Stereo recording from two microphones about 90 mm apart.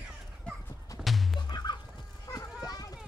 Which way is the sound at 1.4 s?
55° left (ahead or behind).